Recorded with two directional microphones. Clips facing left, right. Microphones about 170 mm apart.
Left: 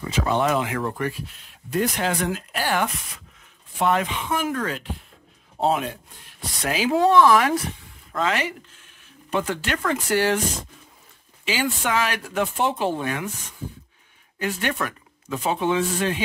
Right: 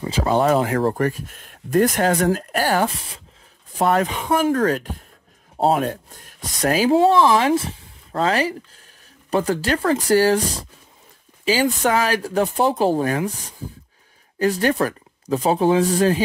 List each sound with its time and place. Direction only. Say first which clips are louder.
0.0 s speech: right 4 dB; 35° right (ahead or behind)
3.7 s speech: right 3 dB; 40° right (ahead or behind)
6.9 s speech: even; 30° right (ahead or behind)